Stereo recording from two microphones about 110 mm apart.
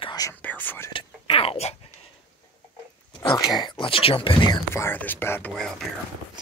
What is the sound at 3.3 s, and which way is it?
Speech, 45° left (ahead or behind).